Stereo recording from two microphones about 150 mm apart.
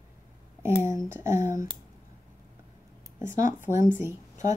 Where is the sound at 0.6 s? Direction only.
20° right (ahead or behind).